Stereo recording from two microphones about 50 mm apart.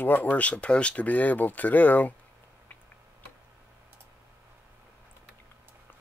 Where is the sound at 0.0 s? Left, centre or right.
Left.